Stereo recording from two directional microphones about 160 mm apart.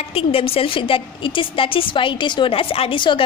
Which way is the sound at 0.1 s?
35° left (ahead or behind).